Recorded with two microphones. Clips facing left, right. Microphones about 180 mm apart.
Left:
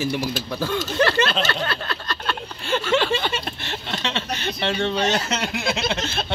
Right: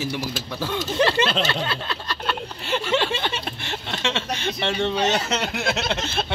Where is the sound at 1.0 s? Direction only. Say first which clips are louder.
Even; 15° right (ahead or behind).